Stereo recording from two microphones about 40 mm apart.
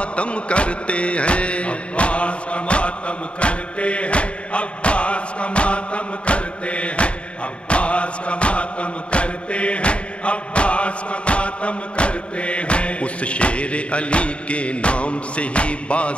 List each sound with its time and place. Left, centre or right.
0.0 s chant: left